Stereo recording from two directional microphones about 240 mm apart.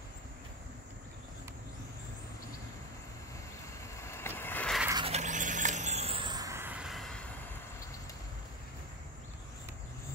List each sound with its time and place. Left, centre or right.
3.9 s vehicle: centre
4.8 s squeal: right; by 7.2 s centre